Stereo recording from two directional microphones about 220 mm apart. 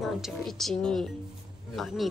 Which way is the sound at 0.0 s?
Centre (ahead or behind).